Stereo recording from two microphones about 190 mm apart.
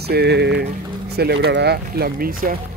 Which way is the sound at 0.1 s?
60° right (ahead or behind).